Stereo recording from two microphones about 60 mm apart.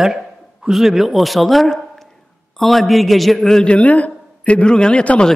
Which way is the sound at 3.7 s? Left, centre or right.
Left.